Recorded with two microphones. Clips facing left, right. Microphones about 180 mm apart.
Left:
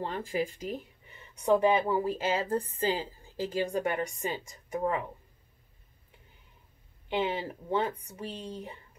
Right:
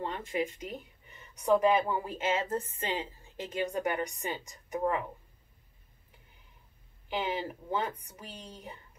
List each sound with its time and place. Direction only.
0.0 s a woman's voice: 30° left (ahead or behind)
7.1 s a woman's voice: 30° left (ahead or behind)